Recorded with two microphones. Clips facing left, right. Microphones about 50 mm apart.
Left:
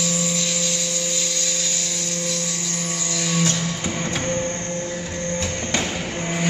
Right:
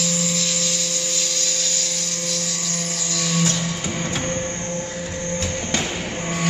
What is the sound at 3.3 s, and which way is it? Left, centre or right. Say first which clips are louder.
Music: even; centre.